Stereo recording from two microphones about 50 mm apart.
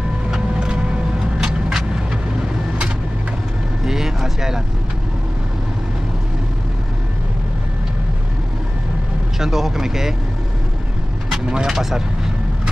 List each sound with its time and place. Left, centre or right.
0.3 s vehicle: centre
3.8 s vehicle: centre
9.4 s speech: centre
11.4 s speech: centre